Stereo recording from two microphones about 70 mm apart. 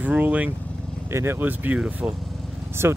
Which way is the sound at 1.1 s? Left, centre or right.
Right.